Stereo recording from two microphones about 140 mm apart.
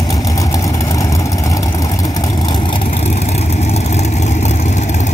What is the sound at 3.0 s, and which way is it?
Vehicle, 50° left (ahead or behind).